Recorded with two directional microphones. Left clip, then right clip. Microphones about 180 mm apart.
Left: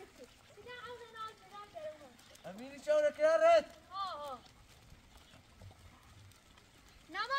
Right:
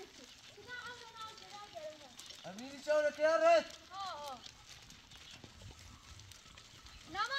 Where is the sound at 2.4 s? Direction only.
45° left (ahead or behind).